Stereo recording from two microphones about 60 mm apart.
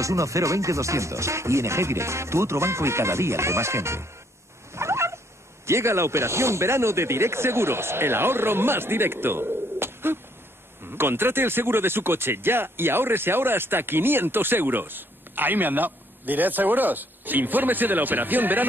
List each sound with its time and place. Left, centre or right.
0.0 s speech: right
4.7 s cat: right
5.7 s speech: right